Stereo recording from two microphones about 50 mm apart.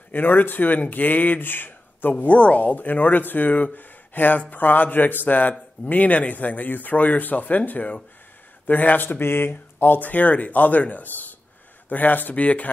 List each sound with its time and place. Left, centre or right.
0.1 s speech: left
2.3 s speech: left